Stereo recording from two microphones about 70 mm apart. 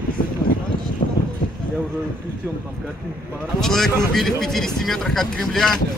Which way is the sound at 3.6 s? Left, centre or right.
Centre.